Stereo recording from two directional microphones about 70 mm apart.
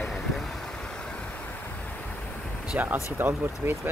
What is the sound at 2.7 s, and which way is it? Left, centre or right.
Speech, right.